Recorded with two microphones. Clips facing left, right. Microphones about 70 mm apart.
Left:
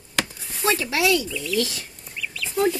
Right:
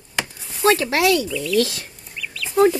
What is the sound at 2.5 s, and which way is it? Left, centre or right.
Chicken, right.